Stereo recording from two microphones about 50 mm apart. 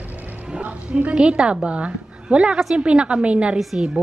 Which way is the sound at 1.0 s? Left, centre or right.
Right.